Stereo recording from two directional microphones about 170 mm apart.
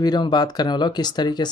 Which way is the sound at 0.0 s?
25° left (ahead or behind).